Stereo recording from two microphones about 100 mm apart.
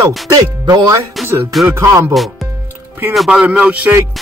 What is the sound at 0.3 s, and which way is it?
Speech, 40° right (ahead or behind).